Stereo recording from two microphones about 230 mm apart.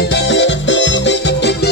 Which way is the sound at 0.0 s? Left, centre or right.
Left.